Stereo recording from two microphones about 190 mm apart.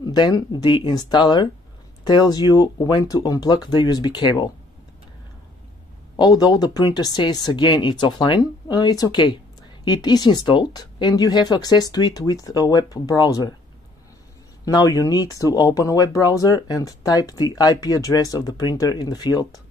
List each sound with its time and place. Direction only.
0.0 s speech: 20° left (ahead or behind)
6.1 s speech: 20° left (ahead or behind)
14.6 s speech: 20° left (ahead or behind)